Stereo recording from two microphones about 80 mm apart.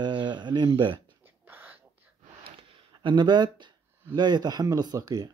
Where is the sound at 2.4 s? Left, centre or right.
Right.